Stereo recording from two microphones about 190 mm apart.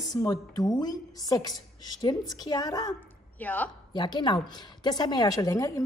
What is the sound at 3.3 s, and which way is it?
Speech, 10° left (ahead or behind).